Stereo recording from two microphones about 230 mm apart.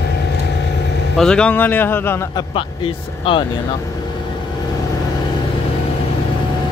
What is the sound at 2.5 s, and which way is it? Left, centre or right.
Speech, left.